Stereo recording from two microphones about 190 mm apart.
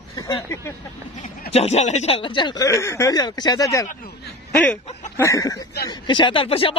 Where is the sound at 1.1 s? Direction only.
40° left (ahead or behind).